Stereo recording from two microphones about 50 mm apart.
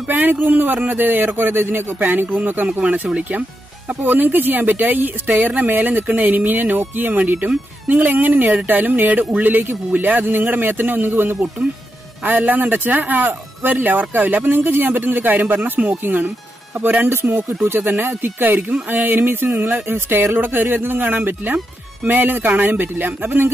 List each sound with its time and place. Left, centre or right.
0.1 s speech: right
2.0 s speech: right
3.2 s speech: right
4.0 s speech: right
14.4 s speech: right
17.1 s speech: right